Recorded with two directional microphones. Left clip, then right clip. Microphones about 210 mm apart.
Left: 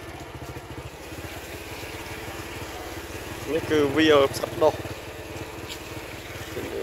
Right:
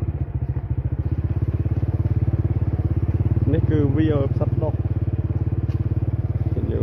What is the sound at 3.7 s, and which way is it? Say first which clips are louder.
Speech: left 5 dB; 15° left (ahead or behind).